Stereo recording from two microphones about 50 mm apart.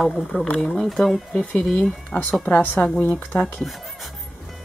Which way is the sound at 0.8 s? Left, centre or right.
Centre.